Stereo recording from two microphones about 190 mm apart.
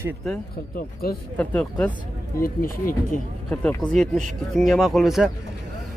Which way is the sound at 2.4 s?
50° left (ahead or behind).